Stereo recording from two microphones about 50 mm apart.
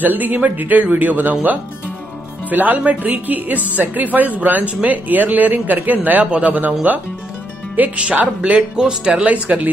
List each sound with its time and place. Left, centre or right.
0.0 s speech: right
7.7 s speech: right
8.7 s speech: centre
9.2 s speech: right